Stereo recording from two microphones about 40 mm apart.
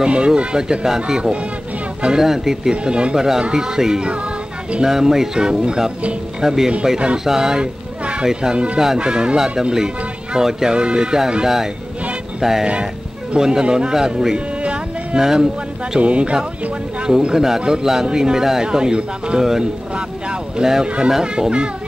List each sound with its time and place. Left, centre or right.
0.0 s a man's voice: right
2.7 s a man's voice: right
16.0 s speech: right
17.0 s a man's voice: centre